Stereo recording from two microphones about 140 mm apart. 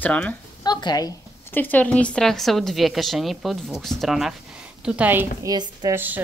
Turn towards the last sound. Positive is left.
turn(degrees=-15)  # may be behind; listen again after turning